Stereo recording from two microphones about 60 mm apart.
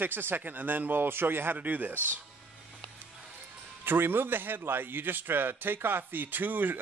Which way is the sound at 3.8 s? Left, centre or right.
Right.